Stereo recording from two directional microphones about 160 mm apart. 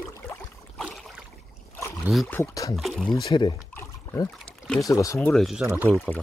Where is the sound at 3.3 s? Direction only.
30° left (ahead or behind).